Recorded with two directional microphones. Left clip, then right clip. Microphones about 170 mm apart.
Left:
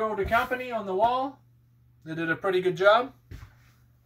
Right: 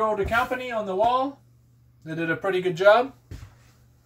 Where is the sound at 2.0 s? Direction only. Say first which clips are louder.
Right 2 dB; 5° right (ahead or behind).